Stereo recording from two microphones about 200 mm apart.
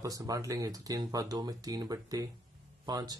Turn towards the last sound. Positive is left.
turn(degrees=-20)  # may be behind; listen again after turning